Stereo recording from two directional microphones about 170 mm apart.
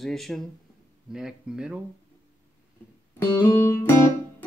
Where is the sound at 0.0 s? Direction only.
Centre (ahead or behind).